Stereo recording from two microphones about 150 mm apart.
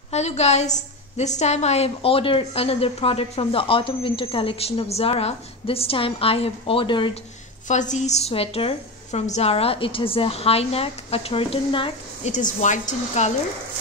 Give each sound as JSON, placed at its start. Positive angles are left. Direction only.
{"t": 0.1, "sound": "a woman's voice", "side_deg": 45}
{"t": 7.6, "sound": "a woman's voice", "side_deg": 55}
{"t": 12.3, "sound": "a woman's voice", "side_deg": 55}